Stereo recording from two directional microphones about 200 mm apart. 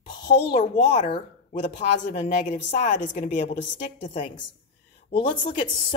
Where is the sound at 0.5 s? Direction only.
30° left (ahead or behind).